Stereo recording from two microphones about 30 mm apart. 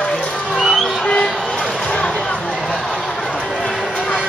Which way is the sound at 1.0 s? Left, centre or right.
Left.